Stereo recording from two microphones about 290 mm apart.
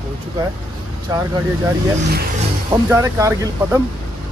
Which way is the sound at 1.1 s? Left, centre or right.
Centre.